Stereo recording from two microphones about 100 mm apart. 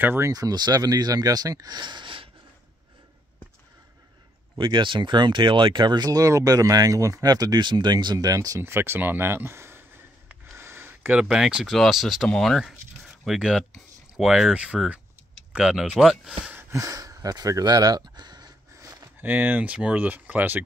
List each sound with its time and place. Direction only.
0.0 s speech: 25° right (ahead or behind)
0.3 s speech: 40° right (ahead or behind)
4.6 s speech: 55° right (ahead or behind); by 9.8 s 25° right (ahead or behind)
10.6 s a sound: 25° right (ahead or behind)
11.2 s speech: 5° right (ahead or behind)
16.5 s speech: 35° right (ahead or behind)
19.2 s speech: 20° right (ahead or behind)